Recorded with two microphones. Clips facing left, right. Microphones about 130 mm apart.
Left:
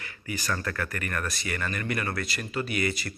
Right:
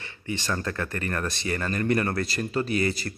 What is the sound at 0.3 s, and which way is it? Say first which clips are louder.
Speech: right 2 dB; 25° right (ahead or behind).